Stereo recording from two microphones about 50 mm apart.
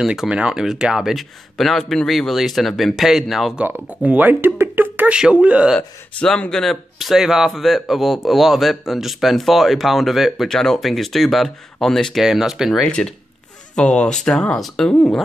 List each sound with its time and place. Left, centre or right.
0.0 s speech: centre
1.1 s speech: centre
4.0 s speech: right
5.1 s speech: right
6.5 s speech: centre
10.5 s speech: centre
12.2 s speech: centre
12.8 s speech: centre